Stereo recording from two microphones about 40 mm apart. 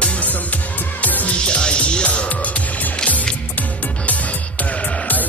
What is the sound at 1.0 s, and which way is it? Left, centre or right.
Music, left.